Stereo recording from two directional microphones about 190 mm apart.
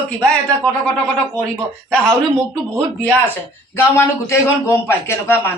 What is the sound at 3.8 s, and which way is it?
Speech, 15° left (ahead or behind).